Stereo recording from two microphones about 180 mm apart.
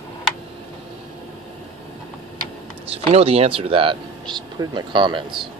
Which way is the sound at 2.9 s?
35° right (ahead or behind).